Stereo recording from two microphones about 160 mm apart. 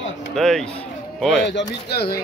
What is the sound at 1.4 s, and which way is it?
Speech, 90° left.